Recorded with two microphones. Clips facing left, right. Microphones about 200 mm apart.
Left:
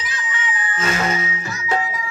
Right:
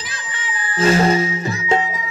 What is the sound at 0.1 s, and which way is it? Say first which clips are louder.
Music: left 4 dB; 30° right (ahead or behind).